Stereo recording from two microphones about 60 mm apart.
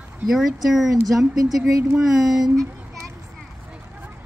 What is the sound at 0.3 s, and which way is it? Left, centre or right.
Speech, centre.